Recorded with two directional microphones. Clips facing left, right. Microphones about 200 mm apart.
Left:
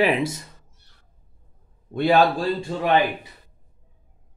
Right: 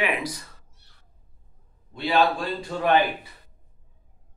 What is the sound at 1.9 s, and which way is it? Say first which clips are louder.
Speech: left 4 dB; 50° left (ahead or behind).